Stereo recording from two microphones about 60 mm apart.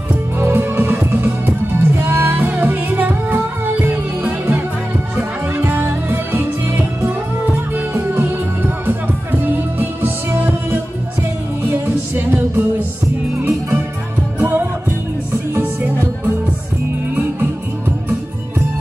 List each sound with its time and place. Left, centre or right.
0.4 s music: right
7.9 s music: right
14.4 s music: right